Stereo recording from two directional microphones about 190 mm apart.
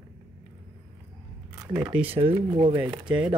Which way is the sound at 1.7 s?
10° right (ahead or behind).